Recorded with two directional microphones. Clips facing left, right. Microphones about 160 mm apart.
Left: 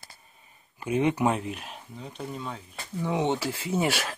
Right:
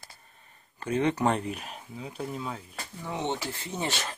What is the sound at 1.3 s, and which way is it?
Speech, centre (ahead or behind).